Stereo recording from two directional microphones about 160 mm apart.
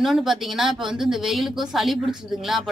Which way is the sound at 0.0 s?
Centre (ahead or behind).